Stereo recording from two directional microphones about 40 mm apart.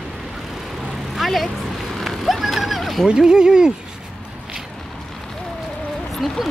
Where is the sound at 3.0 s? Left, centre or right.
Right.